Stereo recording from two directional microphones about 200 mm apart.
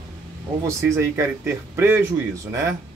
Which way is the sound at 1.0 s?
15° right (ahead or behind).